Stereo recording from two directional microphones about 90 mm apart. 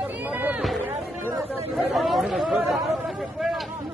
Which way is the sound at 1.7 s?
Centre (ahead or behind).